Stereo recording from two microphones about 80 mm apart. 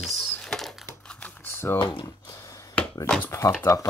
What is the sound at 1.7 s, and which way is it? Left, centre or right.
Speech, left.